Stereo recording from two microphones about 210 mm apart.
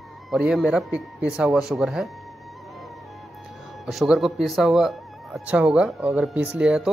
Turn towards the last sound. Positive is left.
turn(degrees=-5)  # may be behind; listen again after turning